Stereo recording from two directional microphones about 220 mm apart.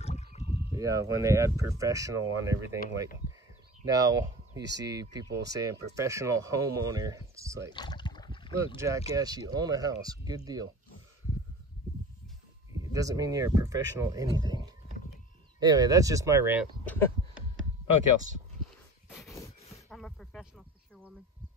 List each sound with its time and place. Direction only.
0.0 s rowboat: 30° left (ahead or behind)
0.7 s speech: 15° right (ahead or behind)
3.9 s speech: 15° right (ahead or behind)
7.7 s a sound: 20° left (ahead or behind)
8.7 s speech: 15° right (ahead or behind)
12.9 s speech: 15° right (ahead or behind)
15.6 s speech: 15° right (ahead or behind)
19.0 s a sound: centre (ahead or behind)